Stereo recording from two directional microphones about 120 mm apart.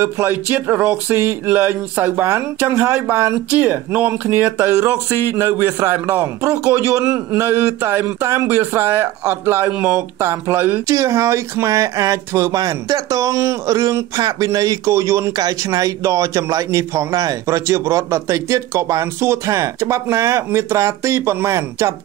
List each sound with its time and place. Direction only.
0.0 s speech: 15° right (ahead or behind)